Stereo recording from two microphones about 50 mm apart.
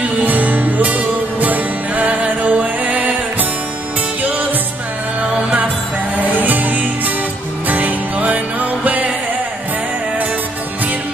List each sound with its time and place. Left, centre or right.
0.2 s music: right
6.1 s music: right